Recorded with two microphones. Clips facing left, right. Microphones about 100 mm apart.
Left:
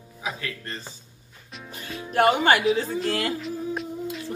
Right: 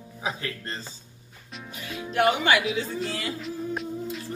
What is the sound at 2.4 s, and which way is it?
Speech, 40° left (ahead or behind).